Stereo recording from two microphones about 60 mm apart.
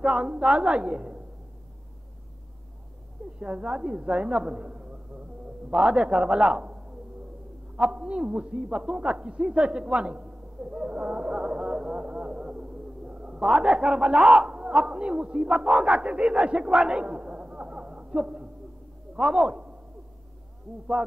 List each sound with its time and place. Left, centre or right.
0.0 s a woman's voice: centre
3.3 s a woman's voice: centre